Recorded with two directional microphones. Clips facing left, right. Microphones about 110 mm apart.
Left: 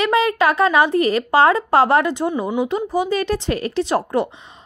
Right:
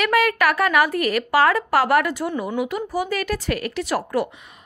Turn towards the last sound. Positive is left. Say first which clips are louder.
# left 4 dB
turn(degrees=25)  # may be behind; listen again after turning